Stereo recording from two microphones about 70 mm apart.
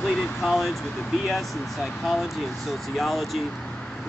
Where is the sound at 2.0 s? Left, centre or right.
Centre.